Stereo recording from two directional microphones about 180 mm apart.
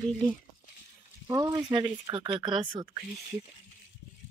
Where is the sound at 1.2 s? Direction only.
20° right (ahead or behind).